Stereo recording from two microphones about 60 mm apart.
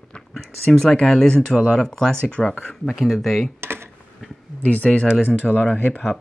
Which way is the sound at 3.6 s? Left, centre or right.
Right.